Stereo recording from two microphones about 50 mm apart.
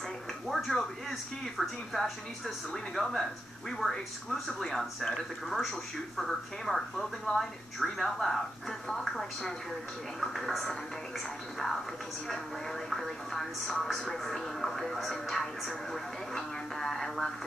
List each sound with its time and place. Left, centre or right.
0.5 s speech: centre
12.9 s speech: centre